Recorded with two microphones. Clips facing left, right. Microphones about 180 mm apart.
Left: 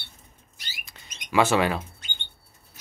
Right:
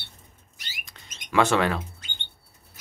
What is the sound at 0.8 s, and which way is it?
Bird, 5° left (ahead or behind).